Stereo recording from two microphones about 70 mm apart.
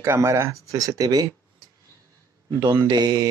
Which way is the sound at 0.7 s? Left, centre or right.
Right.